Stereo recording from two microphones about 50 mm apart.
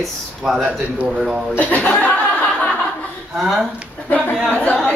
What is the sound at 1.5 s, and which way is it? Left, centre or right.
Speech, left.